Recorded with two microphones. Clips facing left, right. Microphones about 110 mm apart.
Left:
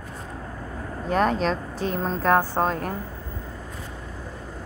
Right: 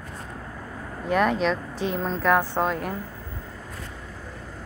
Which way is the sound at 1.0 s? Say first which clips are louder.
Even; 35° left (ahead or behind).